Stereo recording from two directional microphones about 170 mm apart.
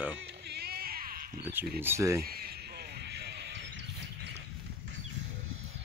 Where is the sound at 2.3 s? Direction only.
65° right (ahead or behind); by 4.4 s 90° right.